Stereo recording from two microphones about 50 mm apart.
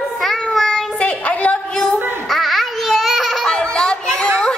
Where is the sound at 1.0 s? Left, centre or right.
Left.